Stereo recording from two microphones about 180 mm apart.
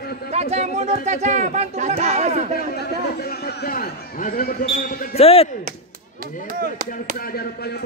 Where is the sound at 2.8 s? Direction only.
60° left (ahead or behind).